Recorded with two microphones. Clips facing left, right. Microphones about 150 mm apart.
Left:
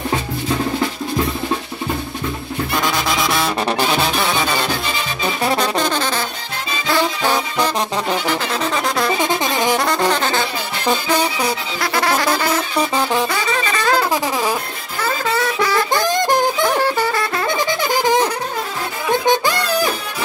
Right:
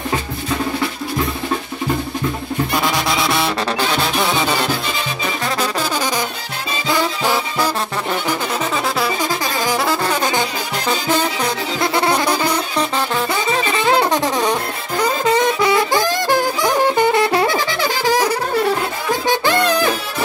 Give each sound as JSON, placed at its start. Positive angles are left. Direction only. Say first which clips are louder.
{"t": 2.7, "sound": "music", "louder": "left 1 dB", "side_deg": -10}
{"t": 5.6, "sound": "music", "louder": "left 2 dB", "side_deg": -10}
{"t": 9.2, "sound": "music", "louder": "left 2 dB", "side_deg": 25}
{"t": 9.8, "sound": "music", "louder": "even", "side_deg": -5}
{"t": 11.1, "sound": "music", "louder": "even", "side_deg": 15}
{"t": 11.8, "sound": "music", "louder": "right 1 dB", "side_deg": -25}
{"t": 12.7, "sound": "music", "louder": "left 1 dB", "side_deg": 10}
{"t": 13.3, "sound": "music", "louder": "right 2 dB", "side_deg": -20}
{"t": 14.1, "sound": "a sound", "louder": "right 2 dB", "side_deg": 5}
{"t": 15.0, "sound": "music", "louder": "right 4 dB", "side_deg": -15}
{"t": 16.1, "sound": "music", "louder": "left 1 dB", "side_deg": 20}
{"t": 16.6, "sound": "music", "louder": "right 2 dB", "side_deg": -20}
{"t": 17.6, "sound": "music", "louder": "left 1 dB", "side_deg": 20}
{"t": 19.2, "sound": "music", "louder": "right 4 dB", "side_deg": 15}